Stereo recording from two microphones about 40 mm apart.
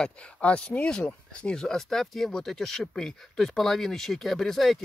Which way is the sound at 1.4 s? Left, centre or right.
Centre.